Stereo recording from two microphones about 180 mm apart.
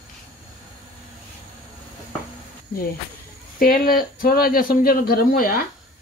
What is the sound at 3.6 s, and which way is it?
Speech, 50° left (ahead or behind).